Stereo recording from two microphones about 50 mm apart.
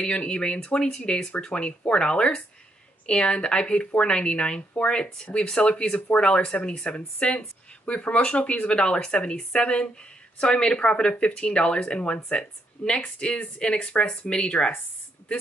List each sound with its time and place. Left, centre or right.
0.0 s speech: centre